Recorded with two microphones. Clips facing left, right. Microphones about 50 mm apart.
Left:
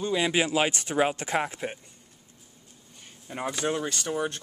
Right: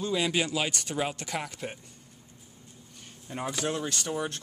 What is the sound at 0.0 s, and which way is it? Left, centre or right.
Speech, centre.